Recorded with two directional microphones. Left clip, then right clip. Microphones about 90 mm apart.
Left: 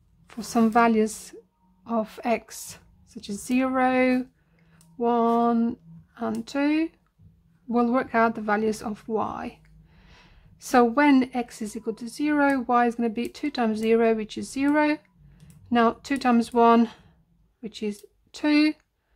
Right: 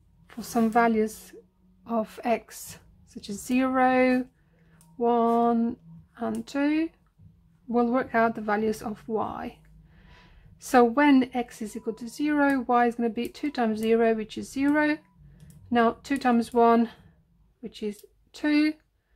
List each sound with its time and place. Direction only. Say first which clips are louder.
0.3 s speech: left 2 dB; 20° left (ahead or behind)
2.0 s a woman's voice: left 1 dB; 15° left (ahead or behind)
4.9 s a sound: left 1 dB; 15° left (ahead or behind)
6.4 s a woman's voice: left 2 dB; 20° left (ahead or behind)